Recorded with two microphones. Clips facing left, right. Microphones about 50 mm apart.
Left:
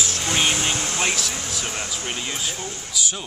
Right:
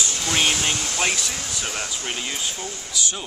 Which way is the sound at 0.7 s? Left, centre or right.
Left.